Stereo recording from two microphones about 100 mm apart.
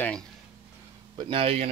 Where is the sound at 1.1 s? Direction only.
60° right (ahead or behind); by 1.7 s 80° right.